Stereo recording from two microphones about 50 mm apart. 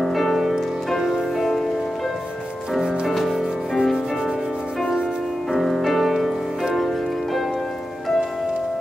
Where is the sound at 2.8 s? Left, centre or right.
Centre.